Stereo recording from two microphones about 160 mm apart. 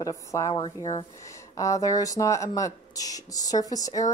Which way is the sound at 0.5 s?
30° left (ahead or behind).